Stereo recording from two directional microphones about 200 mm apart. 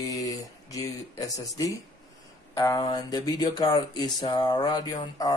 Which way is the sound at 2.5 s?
15° left (ahead or behind).